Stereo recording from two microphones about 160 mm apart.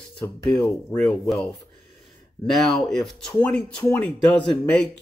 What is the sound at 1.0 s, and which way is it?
Speech, centre (ahead or behind).